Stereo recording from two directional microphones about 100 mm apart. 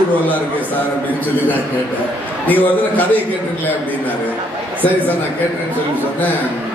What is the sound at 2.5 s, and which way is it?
Speech, 15° left (ahead or behind).